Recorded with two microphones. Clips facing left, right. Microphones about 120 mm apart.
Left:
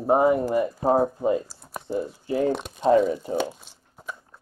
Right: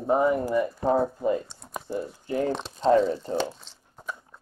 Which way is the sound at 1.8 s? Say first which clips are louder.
Left 4 dB; 20° left (ahead or behind).